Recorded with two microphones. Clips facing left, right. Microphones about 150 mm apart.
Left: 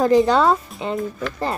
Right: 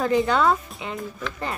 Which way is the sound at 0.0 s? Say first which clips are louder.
Left 5 dB; 35° left (ahead or behind).